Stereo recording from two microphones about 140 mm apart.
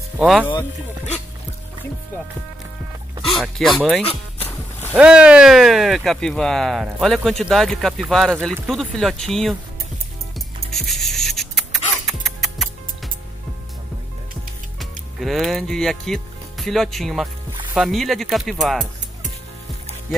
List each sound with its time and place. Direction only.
0.2 s speech: 5° right (ahead or behind)
3.3 s speech: centre (ahead or behind)
4.0 s music: 45° left (ahead or behind)
4.9 s speech: 10° right (ahead or behind)
10.7 s music: centre (ahead or behind)
14.8 s speech: centre (ahead or behind)